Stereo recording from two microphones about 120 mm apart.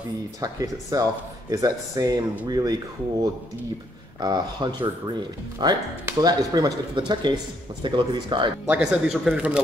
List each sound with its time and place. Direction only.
0.4 s speech: 30° right (ahead or behind)
8.6 s speech: 10° right (ahead or behind)